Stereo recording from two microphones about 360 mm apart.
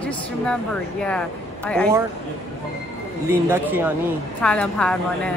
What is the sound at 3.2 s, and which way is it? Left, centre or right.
Speech, centre.